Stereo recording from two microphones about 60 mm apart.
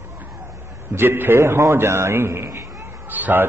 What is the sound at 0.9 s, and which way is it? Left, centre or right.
A man's voice, right.